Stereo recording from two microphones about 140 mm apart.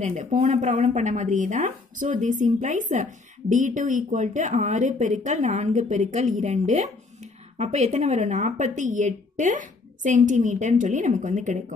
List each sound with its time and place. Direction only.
0.0 s speech: 60° right (ahead or behind)